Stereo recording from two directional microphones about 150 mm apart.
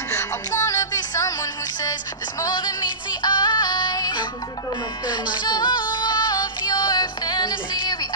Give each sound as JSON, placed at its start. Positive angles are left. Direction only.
{"t": 0.1, "sound": "music", "side_deg": 20}